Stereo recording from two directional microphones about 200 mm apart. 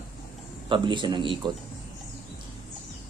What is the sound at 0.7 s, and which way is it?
Speech, 25° right (ahead or behind).